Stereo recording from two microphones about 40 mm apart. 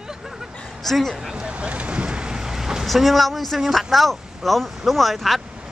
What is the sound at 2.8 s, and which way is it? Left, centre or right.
Speech, centre.